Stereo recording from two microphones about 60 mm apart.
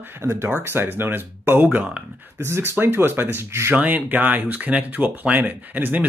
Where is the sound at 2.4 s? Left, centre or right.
Right.